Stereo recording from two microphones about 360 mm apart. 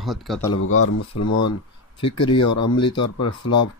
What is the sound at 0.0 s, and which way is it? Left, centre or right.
Speech, centre.